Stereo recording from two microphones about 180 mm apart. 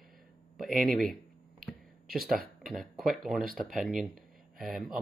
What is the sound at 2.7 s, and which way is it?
Speech, centre (ahead or behind).